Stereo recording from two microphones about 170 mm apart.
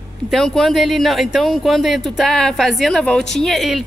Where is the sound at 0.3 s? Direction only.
Centre (ahead or behind).